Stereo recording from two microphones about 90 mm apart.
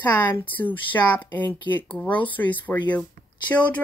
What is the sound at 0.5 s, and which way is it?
A woman's voice, 20° left (ahead or behind).